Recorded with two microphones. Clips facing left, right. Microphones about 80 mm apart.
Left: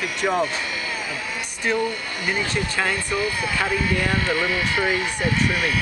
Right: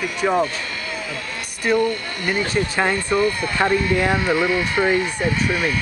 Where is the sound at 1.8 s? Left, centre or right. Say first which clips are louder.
Right 3 dB; centre.